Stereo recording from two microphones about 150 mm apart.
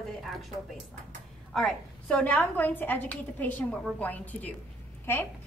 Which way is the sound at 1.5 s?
5° left (ahead or behind).